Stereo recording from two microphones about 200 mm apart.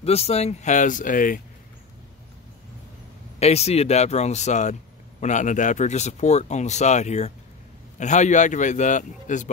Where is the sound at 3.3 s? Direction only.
30° left (ahead or behind).